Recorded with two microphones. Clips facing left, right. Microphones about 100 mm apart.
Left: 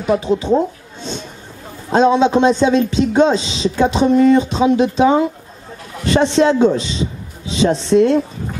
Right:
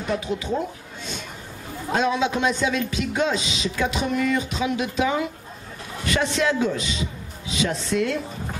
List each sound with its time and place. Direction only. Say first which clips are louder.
0.2 s a woman's voice: left 10 dB; 30° left (ahead or behind)